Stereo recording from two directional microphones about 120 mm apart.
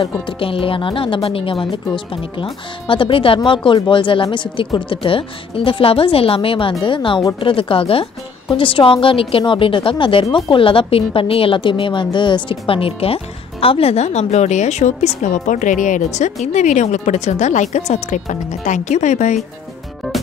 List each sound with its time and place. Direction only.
0.0 s a woman's voice: 50° left (ahead or behind); by 19.4 s 90° left